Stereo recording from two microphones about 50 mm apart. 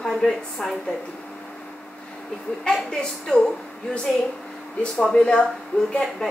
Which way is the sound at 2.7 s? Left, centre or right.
Centre.